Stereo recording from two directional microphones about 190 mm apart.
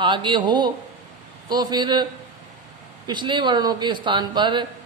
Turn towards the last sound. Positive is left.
turn(degrees=-25)  # may be behind; listen again after turning